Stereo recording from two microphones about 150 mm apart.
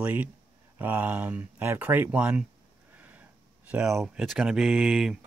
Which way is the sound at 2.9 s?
10° right (ahead or behind).